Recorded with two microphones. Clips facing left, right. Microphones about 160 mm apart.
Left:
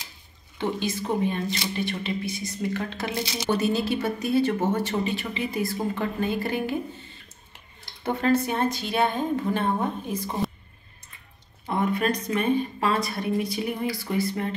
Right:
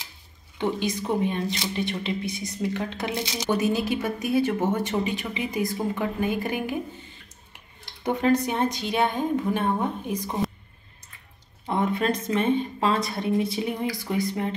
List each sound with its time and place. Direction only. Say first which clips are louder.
0.6 s speech: right 1 dB; 15° right (ahead or behind)
11.6 s speech: even; 20° right (ahead or behind)